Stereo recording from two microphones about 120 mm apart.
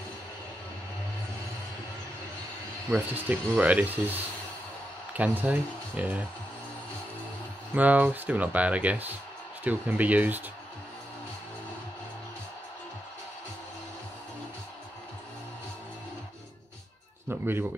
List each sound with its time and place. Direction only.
2.9 s speech: 10° right (ahead or behind)
5.1 s speech: 15° right (ahead or behind)
7.7 s speech: 10° right (ahead or behind)
17.3 s speech: 20° right (ahead or behind)